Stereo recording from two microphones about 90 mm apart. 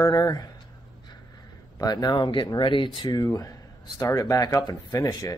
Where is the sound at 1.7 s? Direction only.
45° left (ahead or behind); by 3.1 s 65° left (ahead or behind).